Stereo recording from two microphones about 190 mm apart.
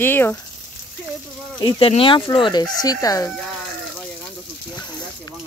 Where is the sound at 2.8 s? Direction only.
20° left (ahead or behind).